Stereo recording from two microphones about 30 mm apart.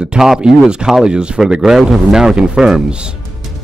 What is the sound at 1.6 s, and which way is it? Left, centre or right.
Speech, centre.